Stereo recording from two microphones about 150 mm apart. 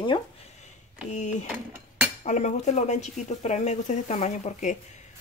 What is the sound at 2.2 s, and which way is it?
Speech, 55° left (ahead or behind).